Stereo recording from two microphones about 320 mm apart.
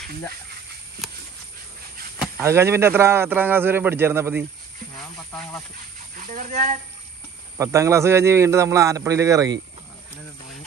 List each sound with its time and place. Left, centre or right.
2.1 s speech: centre
6.1 s speech: right
7.5 s speech: centre